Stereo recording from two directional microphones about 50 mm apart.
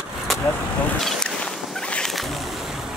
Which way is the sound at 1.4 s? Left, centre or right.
Left.